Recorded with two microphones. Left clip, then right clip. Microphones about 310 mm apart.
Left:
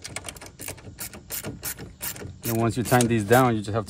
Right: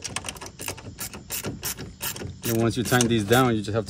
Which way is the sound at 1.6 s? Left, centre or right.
Centre.